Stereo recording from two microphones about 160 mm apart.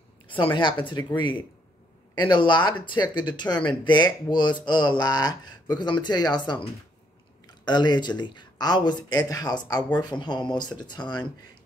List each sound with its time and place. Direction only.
0.3 s speech: 30° left (ahead or behind)